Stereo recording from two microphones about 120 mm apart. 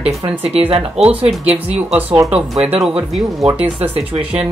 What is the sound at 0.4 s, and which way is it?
Speech, 55° right (ahead or behind).